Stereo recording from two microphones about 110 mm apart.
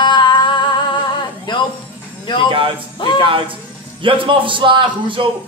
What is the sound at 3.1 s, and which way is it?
A man's voice, 50° right (ahead or behind).